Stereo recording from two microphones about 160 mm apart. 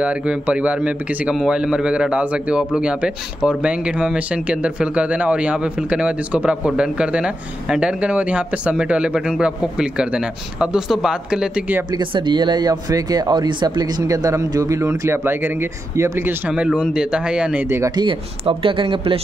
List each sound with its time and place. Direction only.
0.0 s a man's voice: 10° right (ahead or behind)
11.9 s a man's voice: 30° right (ahead or behind)
18.0 s speech: 35° right (ahead or behind)